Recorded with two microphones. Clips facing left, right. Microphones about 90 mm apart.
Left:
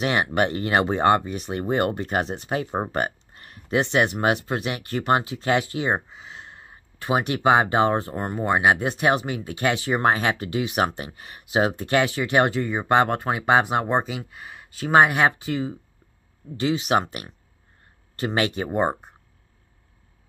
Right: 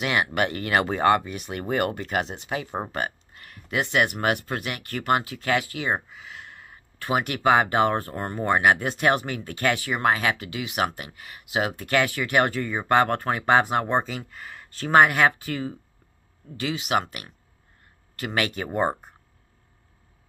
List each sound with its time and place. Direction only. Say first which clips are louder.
0.0 s speech: left 2 dB; 35° left (ahead or behind); by 15.8 s 15° left (ahead or behind)
16.5 s speech: left 4 dB; 30° left (ahead or behind)